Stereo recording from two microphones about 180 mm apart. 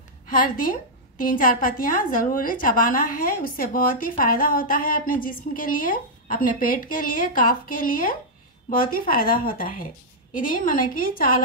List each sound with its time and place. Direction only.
0.3 s a woman's voice: 50° left (ahead or behind)